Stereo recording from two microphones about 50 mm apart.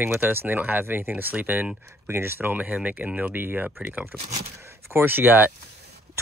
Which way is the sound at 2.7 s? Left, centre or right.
Right.